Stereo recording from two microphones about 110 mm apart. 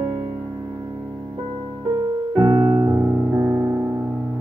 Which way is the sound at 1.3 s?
40° right (ahead or behind).